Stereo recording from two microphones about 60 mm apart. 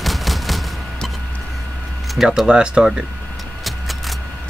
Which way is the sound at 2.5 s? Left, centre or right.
Centre.